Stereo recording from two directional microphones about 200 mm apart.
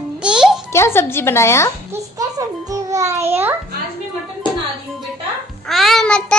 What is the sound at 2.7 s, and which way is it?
Music, 15° right (ahead or behind).